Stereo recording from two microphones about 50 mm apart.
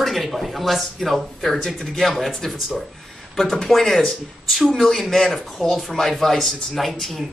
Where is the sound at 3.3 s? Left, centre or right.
Centre.